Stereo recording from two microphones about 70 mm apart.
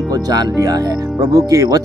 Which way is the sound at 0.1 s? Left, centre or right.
Right.